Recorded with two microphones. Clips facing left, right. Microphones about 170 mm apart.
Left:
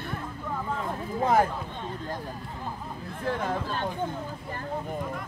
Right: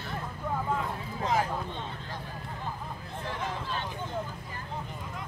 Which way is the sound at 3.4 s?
50° left (ahead or behind).